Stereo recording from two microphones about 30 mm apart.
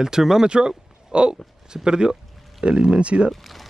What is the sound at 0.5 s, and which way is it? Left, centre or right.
Speech, right.